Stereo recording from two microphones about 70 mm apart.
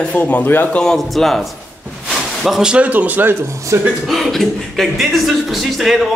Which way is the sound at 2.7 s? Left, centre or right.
Right.